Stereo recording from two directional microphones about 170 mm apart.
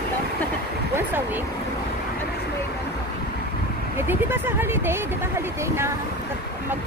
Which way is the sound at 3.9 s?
15° right (ahead or behind).